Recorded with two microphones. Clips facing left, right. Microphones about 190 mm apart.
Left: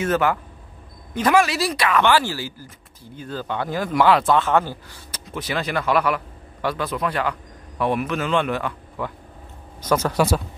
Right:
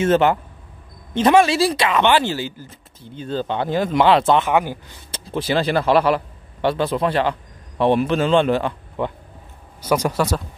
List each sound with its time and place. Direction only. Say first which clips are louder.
0.0 s speech: right 5 dB; 25° right (ahead or behind)
5.1 s a man's voice: right 6 dB; 30° right (ahead or behind)
9.8 s speech: right 2 dB; 10° right (ahead or behind)
10.1 s speech: left 1 dB; 5° left (ahead or behind)